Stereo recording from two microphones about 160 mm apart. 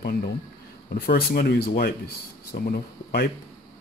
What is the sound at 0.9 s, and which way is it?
Speech, 75° left (ahead or behind).